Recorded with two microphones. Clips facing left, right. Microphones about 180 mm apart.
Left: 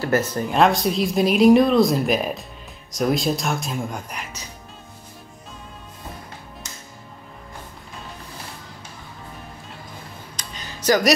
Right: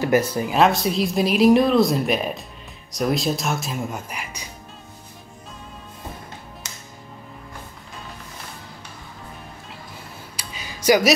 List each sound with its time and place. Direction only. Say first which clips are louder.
0.0 s speech: right 2 dB; 10° right (ahead or behind)
6.6 s music: even; 75° right (ahead or behind)
10.3 s a sound: right 1 dB; 10° right (ahead or behind)